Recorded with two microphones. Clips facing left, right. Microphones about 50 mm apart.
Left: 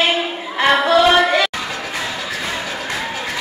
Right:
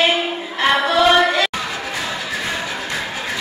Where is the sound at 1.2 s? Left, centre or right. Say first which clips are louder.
Left 1 dB; centre.